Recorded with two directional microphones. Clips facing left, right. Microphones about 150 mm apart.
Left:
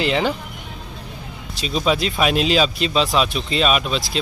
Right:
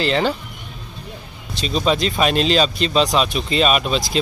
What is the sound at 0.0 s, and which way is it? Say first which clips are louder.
Speech: right 1 dB; 10° left (ahead or behind).